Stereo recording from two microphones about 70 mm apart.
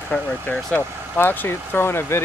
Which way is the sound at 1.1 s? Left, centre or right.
Left.